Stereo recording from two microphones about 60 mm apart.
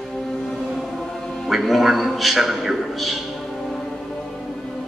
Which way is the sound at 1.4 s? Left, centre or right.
Centre.